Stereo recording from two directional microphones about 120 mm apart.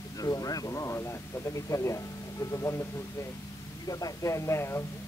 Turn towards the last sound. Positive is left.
turn(degrees=20)  # may be behind; listen again after turning